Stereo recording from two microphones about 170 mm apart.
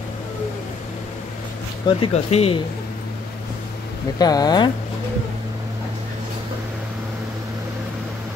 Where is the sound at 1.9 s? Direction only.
35° left (ahead or behind).